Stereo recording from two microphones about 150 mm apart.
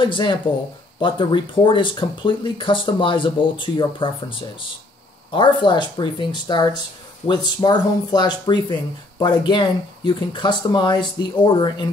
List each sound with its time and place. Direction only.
0.0 s speech: 35° left (ahead or behind)